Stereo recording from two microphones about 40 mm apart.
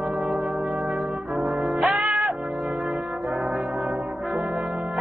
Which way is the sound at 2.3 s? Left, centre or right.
Right.